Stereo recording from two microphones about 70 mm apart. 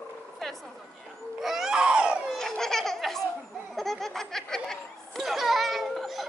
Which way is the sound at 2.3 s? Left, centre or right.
Centre.